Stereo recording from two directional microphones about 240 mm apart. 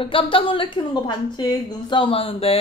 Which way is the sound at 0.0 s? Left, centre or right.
Left.